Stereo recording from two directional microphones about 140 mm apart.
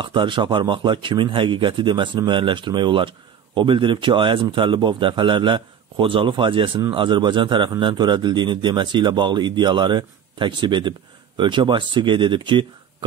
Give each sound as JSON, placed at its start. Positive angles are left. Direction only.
{"t": 0.0, "sound": "speech", "side_deg": -35}